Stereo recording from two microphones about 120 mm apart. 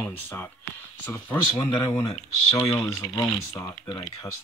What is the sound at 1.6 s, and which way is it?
Speech, 35° left (ahead or behind).